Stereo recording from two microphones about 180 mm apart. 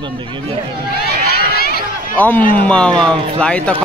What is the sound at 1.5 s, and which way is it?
Run, 60° left (ahead or behind).